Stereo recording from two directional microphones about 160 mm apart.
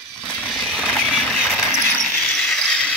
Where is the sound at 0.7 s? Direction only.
5° left (ahead or behind).